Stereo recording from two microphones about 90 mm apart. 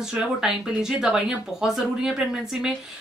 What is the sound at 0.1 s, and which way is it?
Speech, 10° right (ahead or behind).